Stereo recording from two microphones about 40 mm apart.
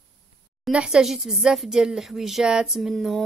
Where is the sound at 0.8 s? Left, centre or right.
Centre.